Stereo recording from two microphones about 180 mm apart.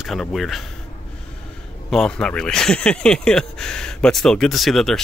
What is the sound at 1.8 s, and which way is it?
Speech, 5° left (ahead or behind).